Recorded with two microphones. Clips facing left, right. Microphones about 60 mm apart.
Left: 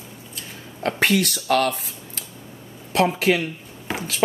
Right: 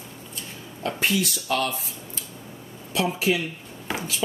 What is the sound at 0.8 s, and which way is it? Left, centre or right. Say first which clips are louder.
Speech: left 4 dB; left.